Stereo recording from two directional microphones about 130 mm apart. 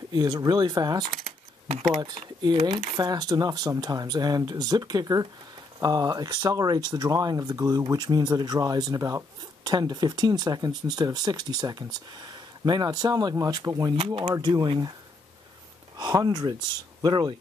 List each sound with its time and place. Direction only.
0.1 s speech: 30° right (ahead or behind)
2.4 s speech: 35° right (ahead or behind)
13.9 s speech: 45° right (ahead or behind)
14.3 s speech: 30° right (ahead or behind)
16.0 s speech: 30° right (ahead or behind)